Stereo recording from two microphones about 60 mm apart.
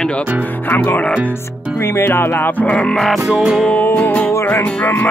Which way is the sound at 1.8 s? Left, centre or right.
Left.